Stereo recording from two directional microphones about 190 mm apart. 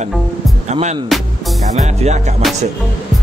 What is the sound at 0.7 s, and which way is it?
Music, 35° right (ahead or behind).